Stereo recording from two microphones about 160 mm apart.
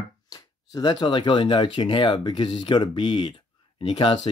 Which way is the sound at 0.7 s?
25° left (ahead or behind).